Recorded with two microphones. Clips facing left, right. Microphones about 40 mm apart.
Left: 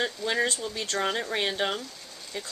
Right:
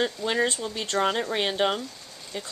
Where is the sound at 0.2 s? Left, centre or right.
Centre.